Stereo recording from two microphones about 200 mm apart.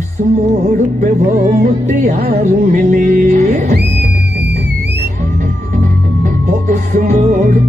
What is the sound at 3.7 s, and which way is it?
Music, 55° right (ahead or behind).